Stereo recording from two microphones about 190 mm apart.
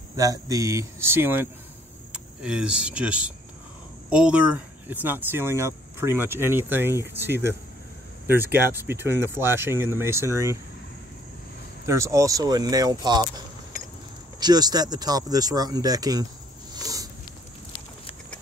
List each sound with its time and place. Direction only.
0.1 s speech: 20° right (ahead or behind)
11.8 s speech: 15° right (ahead or behind)
14.4 s speech: 20° right (ahead or behind)
16.8 s a sound: 20° right (ahead or behind)